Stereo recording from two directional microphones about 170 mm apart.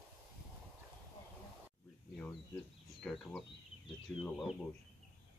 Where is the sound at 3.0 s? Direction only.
Centre (ahead or behind).